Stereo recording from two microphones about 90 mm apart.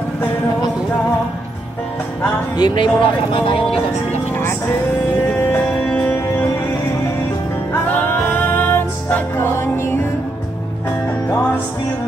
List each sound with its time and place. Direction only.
2.5 s speech: 55° left (ahead or behind); by 3.8 s 80° left
4.4 s music: 25° left (ahead or behind)
5.9 s music: 10° left (ahead or behind)
7.7 s music: 20° left (ahead or behind)